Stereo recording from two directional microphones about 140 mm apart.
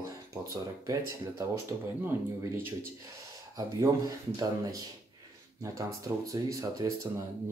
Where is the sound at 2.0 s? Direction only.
15° right (ahead or behind).